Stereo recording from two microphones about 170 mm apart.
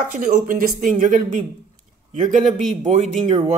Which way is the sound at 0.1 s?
50° right (ahead or behind).